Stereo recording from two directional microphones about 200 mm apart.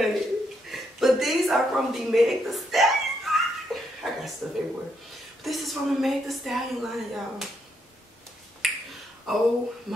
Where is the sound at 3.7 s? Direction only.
Centre (ahead or behind).